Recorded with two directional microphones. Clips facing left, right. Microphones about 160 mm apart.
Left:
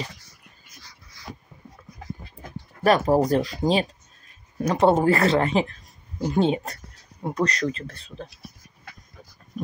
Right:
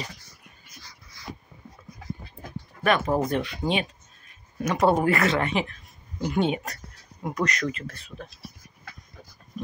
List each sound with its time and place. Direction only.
2.8 s speech: 35° left (ahead or behind)